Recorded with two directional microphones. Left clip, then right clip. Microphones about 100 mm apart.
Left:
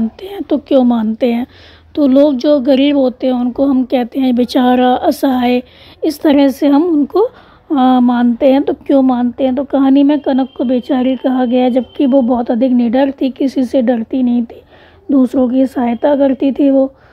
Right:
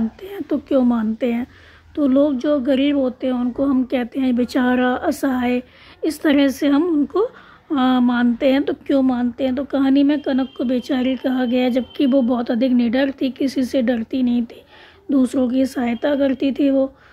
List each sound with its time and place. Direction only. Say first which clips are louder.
0.2 s a woman's voice: left 7 dB; 35° left (ahead or behind); by 2.3 s 55° left (ahead or behind)
2.3 s a woman's voice: left 8 dB; 45° left (ahead or behind)
6.0 s a woman's voice: left 6 dB; 35° left (ahead or behind)
7.1 s a woman's voice: left 8 dB; 65° left (ahead or behind)
7.7 s a woman's voice: left 7 dB; 40° left (ahead or behind)